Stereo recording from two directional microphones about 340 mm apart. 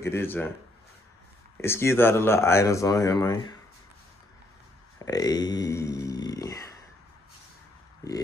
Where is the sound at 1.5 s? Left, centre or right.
Centre.